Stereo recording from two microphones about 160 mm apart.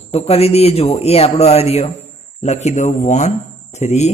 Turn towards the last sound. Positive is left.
turn(degrees=45)  # may be behind; listen again after turning